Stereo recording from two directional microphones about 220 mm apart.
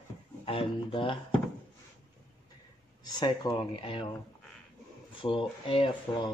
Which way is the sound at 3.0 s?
20° left (ahead or behind).